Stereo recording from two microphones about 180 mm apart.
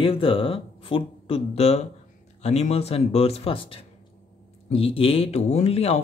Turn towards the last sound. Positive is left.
turn(degrees=35)  # may be behind; listen again after turning